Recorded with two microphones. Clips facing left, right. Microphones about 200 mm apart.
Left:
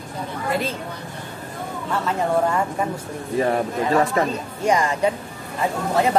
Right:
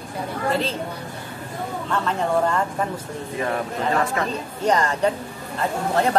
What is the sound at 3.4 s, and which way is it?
Speech, 35° left (ahead or behind).